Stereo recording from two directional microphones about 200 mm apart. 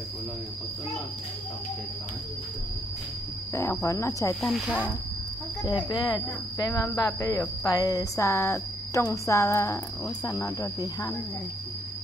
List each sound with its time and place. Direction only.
3.5 s speech: 15° left (ahead or behind)
4.4 s speech: centre (ahead or behind)
5.9 s speech: 20° left (ahead or behind)